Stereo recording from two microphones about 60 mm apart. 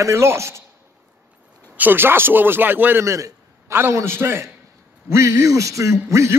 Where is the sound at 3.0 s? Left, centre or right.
Right.